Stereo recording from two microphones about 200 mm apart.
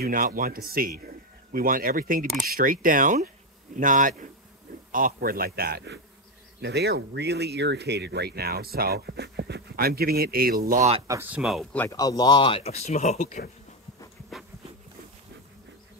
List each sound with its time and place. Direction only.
0.0 s speech: 45° right (ahead or behind)
11.1 s speech: 10° right (ahead or behind)
11.4 s speech: 5° left (ahead or behind); by 13.5 s 40° left (ahead or behind)